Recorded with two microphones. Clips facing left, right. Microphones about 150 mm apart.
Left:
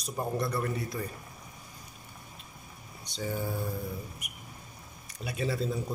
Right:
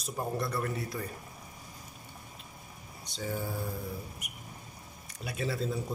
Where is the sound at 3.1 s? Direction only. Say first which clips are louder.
Left 2 dB; centre (ahead or behind).